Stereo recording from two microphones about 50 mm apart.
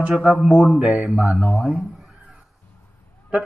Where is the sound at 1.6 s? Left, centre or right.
Centre.